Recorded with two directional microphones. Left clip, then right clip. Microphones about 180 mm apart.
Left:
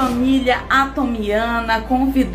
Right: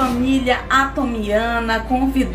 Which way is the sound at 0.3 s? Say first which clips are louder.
Left 1 dB; 10° left (ahead or behind).